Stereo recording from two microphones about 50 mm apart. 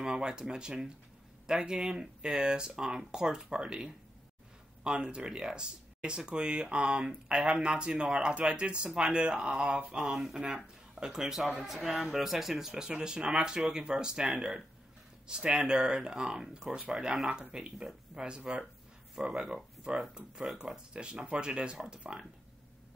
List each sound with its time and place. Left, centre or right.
0.0 s speech: centre